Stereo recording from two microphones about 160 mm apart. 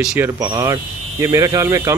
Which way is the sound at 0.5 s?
20° right (ahead or behind).